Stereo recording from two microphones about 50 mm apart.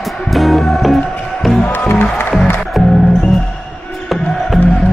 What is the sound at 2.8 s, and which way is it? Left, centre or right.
Music, centre.